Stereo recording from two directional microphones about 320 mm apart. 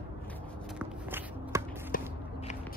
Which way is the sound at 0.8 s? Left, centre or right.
Centre.